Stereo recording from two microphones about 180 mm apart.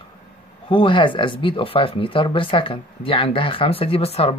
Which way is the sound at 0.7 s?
30° left (ahead or behind).